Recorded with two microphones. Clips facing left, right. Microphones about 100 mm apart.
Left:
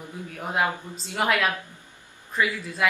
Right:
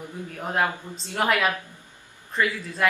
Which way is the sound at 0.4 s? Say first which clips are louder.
Even; 5° left (ahead or behind).